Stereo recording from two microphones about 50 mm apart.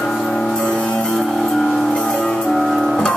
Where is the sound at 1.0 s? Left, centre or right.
Centre.